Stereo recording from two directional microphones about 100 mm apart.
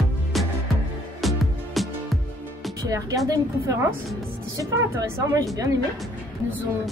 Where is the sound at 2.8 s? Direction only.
35° right (ahead or behind).